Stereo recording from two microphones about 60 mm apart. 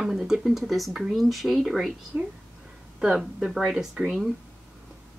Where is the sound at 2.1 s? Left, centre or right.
Right.